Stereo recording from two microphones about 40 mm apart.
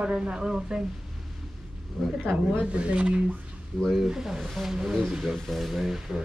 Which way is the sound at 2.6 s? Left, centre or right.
Right.